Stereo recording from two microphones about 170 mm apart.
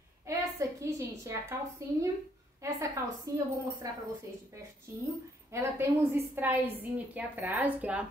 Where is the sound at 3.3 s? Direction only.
20° right (ahead or behind).